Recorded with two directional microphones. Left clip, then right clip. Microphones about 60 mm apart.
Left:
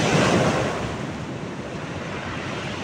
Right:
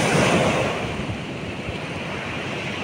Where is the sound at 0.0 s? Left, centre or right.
Right.